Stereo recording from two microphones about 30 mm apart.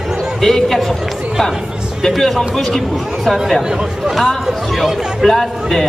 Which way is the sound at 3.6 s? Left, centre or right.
Right.